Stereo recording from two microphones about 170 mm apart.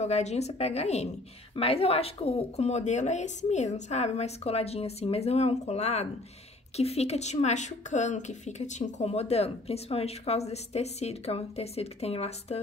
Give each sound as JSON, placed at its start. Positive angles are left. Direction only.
{"t": 0.0, "sound": "a woman's voice", "side_deg": 40}